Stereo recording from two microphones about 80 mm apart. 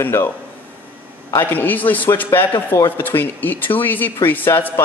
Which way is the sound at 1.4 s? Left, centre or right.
Left.